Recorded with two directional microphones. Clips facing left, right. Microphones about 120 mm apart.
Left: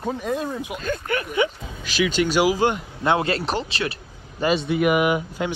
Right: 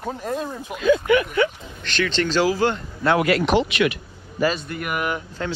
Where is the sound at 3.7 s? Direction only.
30° left (ahead or behind).